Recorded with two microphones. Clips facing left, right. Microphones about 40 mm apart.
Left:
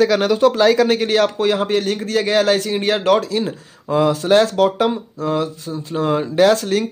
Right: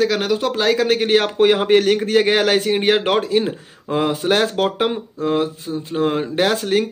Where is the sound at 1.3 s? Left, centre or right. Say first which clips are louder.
Right 4 dB; right.